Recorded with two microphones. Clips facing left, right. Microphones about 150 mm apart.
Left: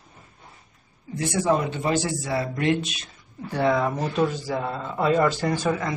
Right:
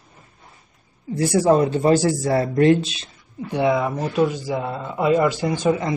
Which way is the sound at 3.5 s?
10° right (ahead or behind).